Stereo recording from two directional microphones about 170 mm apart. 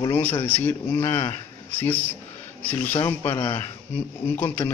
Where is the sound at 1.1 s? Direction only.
25° left (ahead or behind).